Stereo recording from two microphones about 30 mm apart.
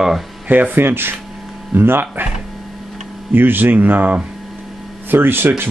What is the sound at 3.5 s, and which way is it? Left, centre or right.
Speech, right.